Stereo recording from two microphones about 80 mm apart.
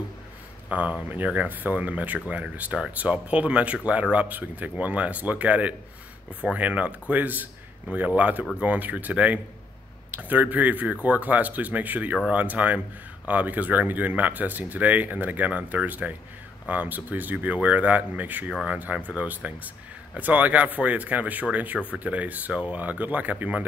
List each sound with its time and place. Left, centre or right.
0.7 s speech: centre